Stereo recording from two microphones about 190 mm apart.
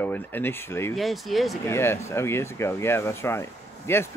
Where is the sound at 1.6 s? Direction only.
15° left (ahead or behind).